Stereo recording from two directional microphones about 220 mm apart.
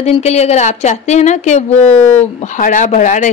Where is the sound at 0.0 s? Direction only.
30° left (ahead or behind).